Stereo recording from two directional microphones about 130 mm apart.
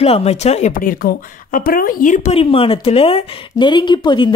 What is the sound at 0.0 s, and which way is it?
Speech, 50° left (ahead or behind).